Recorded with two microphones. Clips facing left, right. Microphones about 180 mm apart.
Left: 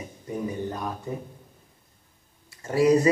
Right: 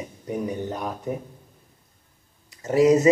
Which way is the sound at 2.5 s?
20° right (ahead or behind).